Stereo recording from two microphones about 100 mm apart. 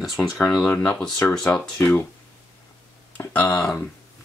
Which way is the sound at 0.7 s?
15° left (ahead or behind).